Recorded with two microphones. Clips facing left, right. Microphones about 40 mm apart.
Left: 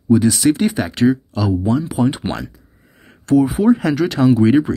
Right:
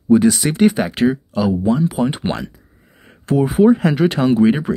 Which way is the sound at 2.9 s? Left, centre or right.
Centre.